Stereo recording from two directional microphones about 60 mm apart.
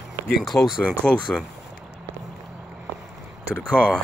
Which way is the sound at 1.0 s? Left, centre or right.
Centre.